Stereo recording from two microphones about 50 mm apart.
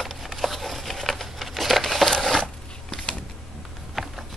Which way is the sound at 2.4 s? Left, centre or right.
Centre.